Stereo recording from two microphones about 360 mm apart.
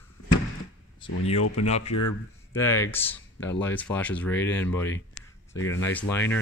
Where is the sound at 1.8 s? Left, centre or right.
Left.